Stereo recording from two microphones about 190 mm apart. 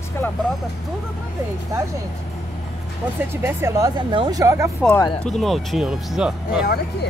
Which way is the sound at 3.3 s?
15° right (ahead or behind).